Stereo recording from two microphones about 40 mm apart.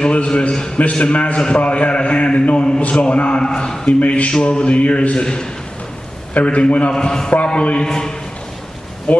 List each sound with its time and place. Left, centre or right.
0.0 s a man's voice: left
4.0 s a man's voice: left
4.3 s a man's voice: left
6.3 s a man's voice: left
6.9 s a man's voice: centre
7.4 s a man's voice: left
7.8 s a man's voice: centre